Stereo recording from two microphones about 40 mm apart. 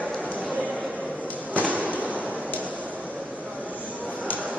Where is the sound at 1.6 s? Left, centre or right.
Right.